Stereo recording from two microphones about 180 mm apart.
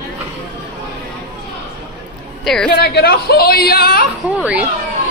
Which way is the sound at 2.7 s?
60° left (ahead or behind).